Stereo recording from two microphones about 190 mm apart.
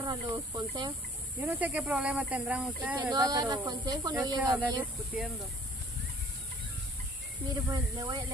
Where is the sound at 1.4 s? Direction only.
10° right (ahead or behind).